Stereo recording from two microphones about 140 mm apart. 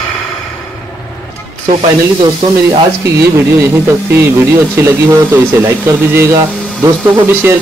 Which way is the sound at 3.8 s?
20° right (ahead or behind).